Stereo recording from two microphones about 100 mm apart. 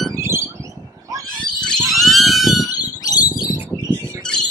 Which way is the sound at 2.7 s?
40° left (ahead or behind).